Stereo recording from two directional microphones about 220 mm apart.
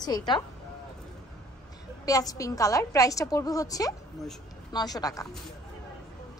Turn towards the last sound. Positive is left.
turn(degrees=15)  # may be behind; listen again after turning